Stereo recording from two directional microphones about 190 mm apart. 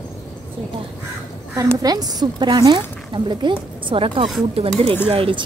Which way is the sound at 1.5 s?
20° right (ahead or behind).